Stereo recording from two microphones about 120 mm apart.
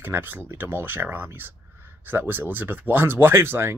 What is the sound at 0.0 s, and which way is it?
Speech, 15° right (ahead or behind).